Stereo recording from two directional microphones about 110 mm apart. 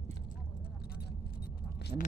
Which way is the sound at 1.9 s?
40° right (ahead or behind).